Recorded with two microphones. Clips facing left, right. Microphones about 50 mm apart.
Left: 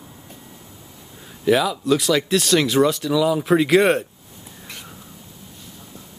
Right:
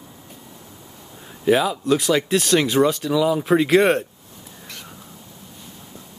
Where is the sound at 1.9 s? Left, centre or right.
Centre.